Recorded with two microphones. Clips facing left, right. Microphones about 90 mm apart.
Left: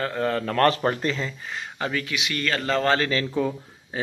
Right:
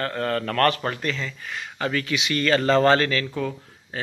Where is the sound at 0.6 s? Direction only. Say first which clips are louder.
Left 2 dB; 30° left (ahead or behind).